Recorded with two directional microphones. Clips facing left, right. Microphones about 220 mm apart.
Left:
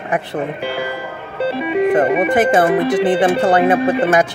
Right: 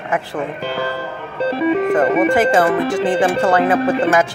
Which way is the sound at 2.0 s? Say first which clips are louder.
Even; 15° left (ahead or behind).